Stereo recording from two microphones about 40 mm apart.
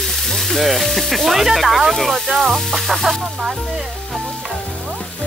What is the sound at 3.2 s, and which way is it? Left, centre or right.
Speech, centre.